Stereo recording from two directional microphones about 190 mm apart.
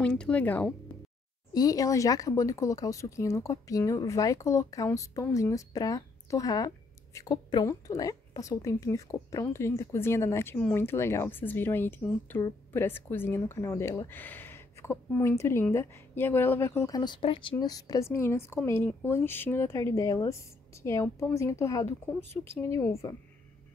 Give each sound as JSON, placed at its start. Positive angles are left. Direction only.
{"t": 0.0, "sound": "a woman's voice", "side_deg": 5}
{"t": 1.5, "sound": "a woman's voice", "side_deg": 20}